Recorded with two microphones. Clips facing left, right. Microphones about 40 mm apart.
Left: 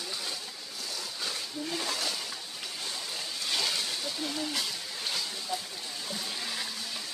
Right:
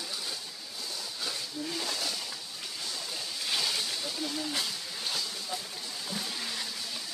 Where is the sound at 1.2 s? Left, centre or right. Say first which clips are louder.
Even; centre.